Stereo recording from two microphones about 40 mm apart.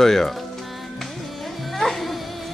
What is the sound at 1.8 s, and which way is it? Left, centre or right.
Music, centre.